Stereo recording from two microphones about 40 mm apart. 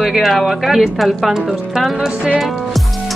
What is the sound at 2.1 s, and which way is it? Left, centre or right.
Speech, right.